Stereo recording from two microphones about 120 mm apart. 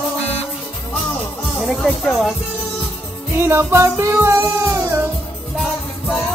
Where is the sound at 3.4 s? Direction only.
20° right (ahead or behind).